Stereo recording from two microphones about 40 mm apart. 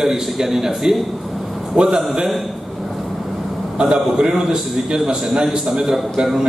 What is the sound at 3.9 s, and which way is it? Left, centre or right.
A man's voice, centre.